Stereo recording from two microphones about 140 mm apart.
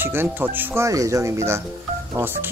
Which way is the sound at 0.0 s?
15° right (ahead or behind).